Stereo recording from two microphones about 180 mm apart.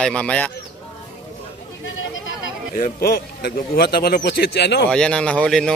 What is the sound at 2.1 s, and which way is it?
Chatter, 90° left.